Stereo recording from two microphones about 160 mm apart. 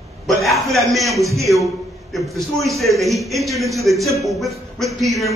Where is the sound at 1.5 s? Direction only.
Centre (ahead or behind).